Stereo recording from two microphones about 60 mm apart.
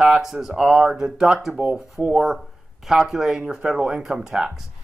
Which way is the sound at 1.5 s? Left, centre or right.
Right.